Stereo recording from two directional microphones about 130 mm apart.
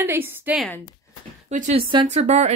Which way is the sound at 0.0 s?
15° right (ahead or behind).